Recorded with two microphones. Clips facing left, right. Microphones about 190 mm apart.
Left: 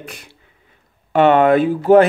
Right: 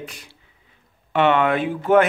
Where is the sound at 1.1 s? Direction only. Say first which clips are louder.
Left 6 dB; 40° left (ahead or behind).